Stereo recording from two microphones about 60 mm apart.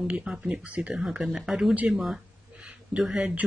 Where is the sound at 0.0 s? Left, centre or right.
Centre.